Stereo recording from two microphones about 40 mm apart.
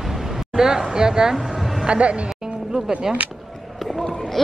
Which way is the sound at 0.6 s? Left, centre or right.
Centre.